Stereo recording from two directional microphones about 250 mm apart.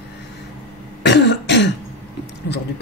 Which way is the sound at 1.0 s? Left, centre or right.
Left.